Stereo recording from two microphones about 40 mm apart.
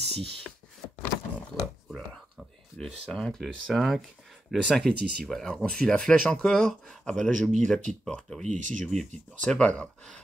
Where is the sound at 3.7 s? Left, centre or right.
Centre.